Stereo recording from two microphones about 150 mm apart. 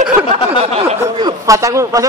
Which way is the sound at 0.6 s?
40° right (ahead or behind).